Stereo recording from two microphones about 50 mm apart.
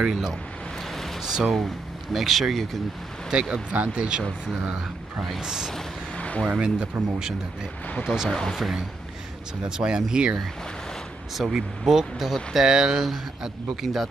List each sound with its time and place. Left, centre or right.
0.0 s speech: centre
1.2 s a sound: centre
2.1 s speech: centre
3.3 s speech: centre
5.4 s speech: centre
6.1 s a sound: left
6.6 s speech: centre
8.3 s speech: centre
9.6 s speech: centre
11.3 s speech: centre